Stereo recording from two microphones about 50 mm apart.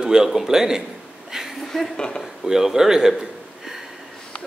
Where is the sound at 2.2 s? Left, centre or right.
Centre.